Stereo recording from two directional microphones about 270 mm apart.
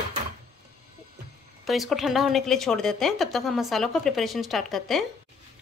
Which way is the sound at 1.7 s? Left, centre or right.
Centre.